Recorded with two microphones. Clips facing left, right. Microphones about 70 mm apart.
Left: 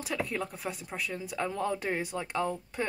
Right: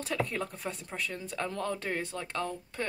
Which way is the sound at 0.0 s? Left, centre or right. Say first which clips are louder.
Even; centre.